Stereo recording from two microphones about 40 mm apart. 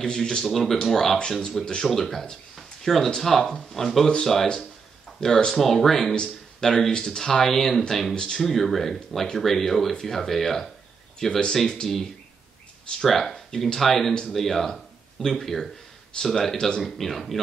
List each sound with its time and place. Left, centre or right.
0.0 s speech: centre
0.5 s speech: centre
2.5 s a sound: centre
3.1 s speech: centre
5.6 s speech: centre
8.1 s speech: centre
8.4 s speech: centre
16.8 s speech: centre